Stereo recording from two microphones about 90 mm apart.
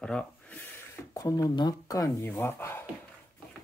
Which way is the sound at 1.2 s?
40° left (ahead or behind).